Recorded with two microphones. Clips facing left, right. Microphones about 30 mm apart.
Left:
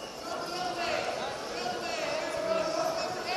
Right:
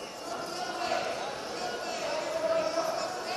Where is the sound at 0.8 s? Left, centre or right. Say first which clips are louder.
Right 2 dB; centre.